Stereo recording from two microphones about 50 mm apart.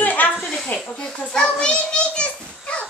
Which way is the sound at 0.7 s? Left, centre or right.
Left.